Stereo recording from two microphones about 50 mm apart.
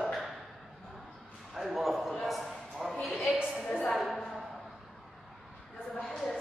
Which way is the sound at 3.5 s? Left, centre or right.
Left.